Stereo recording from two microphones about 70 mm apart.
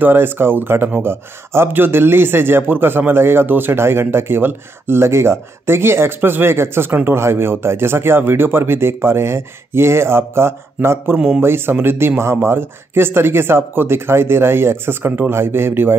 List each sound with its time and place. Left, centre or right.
0.0 s speech: right